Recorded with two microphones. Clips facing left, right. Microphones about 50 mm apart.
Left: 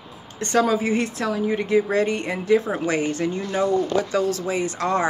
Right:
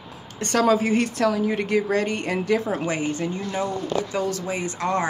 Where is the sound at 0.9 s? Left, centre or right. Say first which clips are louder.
Right 1 dB; right.